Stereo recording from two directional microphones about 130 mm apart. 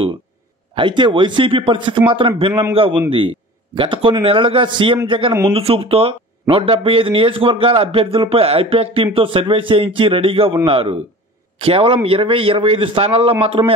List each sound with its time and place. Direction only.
0.7 s a man's voice: 35° right (ahead or behind)